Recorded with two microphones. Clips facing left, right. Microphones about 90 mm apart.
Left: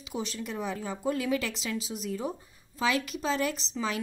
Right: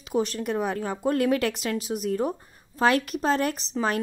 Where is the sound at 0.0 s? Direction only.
50° right (ahead or behind).